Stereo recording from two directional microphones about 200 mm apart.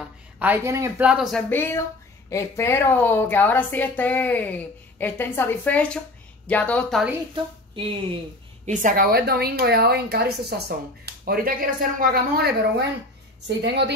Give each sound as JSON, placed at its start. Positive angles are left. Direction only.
{"t": 0.4, "sound": "speech", "side_deg": -10}
{"t": 1.5, "sound": "a woman's voice", "side_deg": 10}
{"t": 7.7, "sound": "speech", "side_deg": -25}
{"t": 8.6, "sound": "a woman's voice", "side_deg": -45}